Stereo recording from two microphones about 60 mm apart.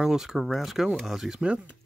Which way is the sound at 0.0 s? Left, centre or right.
Centre.